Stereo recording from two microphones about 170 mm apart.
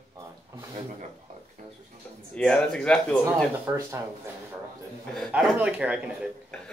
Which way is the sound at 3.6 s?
20° right (ahead or behind).